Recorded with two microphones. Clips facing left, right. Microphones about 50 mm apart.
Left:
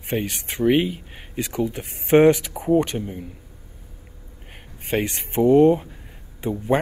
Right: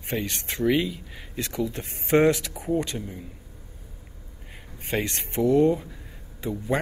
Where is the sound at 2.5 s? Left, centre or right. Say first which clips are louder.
Left 7 dB; left.